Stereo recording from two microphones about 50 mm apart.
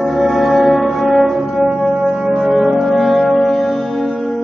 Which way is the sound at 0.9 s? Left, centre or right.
Centre.